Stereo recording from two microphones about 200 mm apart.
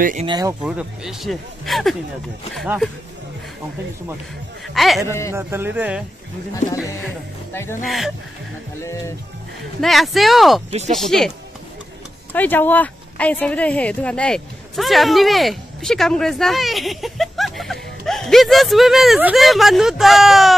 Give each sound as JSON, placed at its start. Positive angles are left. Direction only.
{"t": 0.0, "sound": "speech", "side_deg": -40}
{"t": 0.3, "sound": "speech", "side_deg": -20}
{"t": 0.6, "sound": "speech", "side_deg": -5}
{"t": 4.7, "sound": "speech", "side_deg": 0}
{"t": 5.3, "sound": "speech", "side_deg": -10}
{"t": 7.8, "sound": "speech", "side_deg": 0}
{"t": 9.8, "sound": "speech", "side_deg": 0}